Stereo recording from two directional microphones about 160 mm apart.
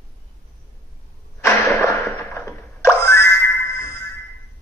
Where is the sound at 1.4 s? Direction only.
15° left (ahead or behind).